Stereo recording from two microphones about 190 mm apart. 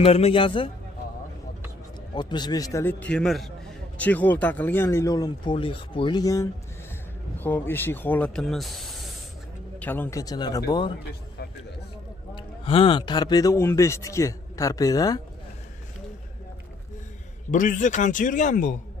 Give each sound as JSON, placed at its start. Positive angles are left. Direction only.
{"t": 0.0, "sound": "a man's voice", "side_deg": 30}
{"t": 2.1, "sound": "a man's voice", "side_deg": 25}
{"t": 12.4, "sound": "a man's voice", "side_deg": 30}
{"t": 17.5, "sound": "speech", "side_deg": 45}